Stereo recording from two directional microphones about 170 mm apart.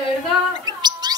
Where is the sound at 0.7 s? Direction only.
25° right (ahead or behind).